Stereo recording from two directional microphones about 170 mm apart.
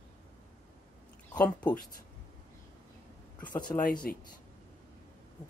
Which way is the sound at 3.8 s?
55° left (ahead or behind).